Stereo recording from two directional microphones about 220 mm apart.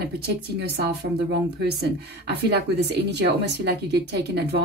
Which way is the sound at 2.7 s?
50° right (ahead or behind).